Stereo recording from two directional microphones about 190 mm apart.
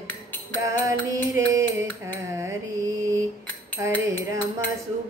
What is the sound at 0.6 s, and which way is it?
Speech, 15° right (ahead or behind).